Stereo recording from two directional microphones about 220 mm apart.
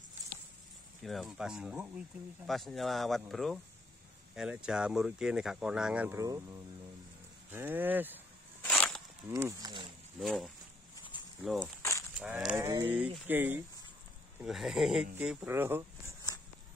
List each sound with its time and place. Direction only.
1.0 s speech: centre (ahead or behind)
8.6 s a sound: 5° left (ahead or behind)
9.3 s speech: 15° right (ahead or behind)
10.2 s speech: centre (ahead or behind)